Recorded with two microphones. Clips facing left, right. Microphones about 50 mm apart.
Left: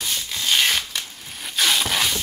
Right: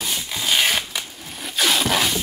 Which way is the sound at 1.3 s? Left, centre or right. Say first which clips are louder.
Right 1 dB; centre.